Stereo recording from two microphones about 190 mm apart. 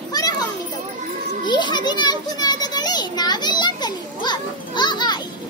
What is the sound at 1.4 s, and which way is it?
A child's voice, 25° left (ahead or behind).